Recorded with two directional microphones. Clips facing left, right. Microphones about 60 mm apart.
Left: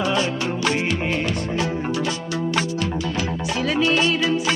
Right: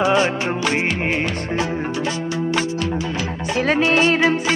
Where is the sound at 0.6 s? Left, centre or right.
Right.